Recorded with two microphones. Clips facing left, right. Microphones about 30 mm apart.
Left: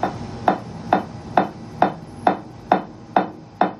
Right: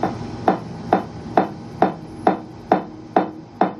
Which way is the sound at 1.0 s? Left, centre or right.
Centre.